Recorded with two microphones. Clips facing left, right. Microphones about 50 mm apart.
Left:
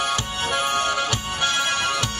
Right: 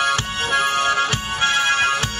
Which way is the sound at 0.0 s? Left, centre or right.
Right.